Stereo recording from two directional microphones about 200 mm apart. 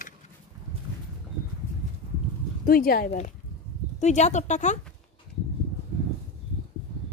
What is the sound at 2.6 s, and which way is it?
Speech, 50° left (ahead or behind).